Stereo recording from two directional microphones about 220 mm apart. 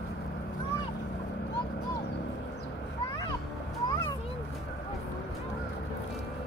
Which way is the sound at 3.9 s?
20° left (ahead or behind).